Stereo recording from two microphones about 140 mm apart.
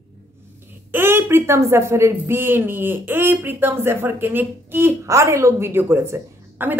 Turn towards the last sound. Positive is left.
turn(degrees=-15)  # may be behind; listen again after turning